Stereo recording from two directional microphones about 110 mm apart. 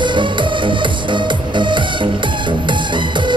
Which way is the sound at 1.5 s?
45° right (ahead or behind).